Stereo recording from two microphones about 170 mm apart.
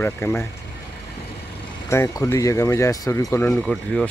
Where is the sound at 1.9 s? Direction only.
20° left (ahead or behind).